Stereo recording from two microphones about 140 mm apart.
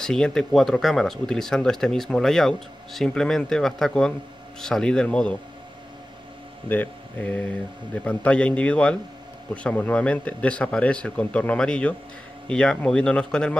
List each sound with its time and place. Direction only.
0.0 s speech: 5° left (ahead or behind)
6.7 s speech: 10° left (ahead or behind)